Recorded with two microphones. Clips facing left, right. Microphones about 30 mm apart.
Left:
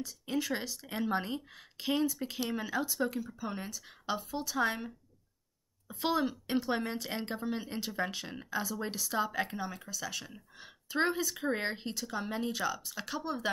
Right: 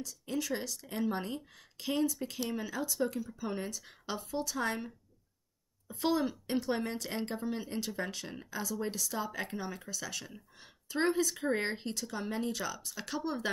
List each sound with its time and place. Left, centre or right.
0.0 s speech: left
9.5 s speech: centre